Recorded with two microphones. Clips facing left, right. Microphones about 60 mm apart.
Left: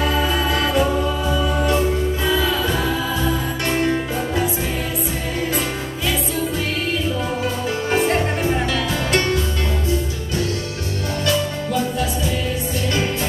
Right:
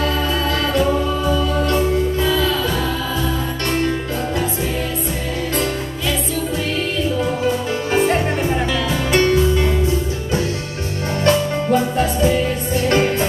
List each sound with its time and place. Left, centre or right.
0.0 s music: centre
7.4 s music: centre
11.2 s music: right